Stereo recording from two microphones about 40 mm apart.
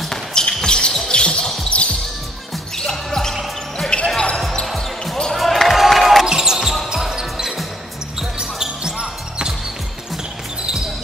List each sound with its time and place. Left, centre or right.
0.3 s basketball bounce: centre
1.7 s music: left
2.9 s basketball bounce: centre
4.7 s basketball bounce: centre
6.2 s basketball bounce: centre